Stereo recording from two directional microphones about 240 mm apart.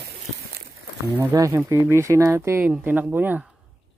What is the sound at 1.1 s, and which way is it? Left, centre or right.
Livestock, centre.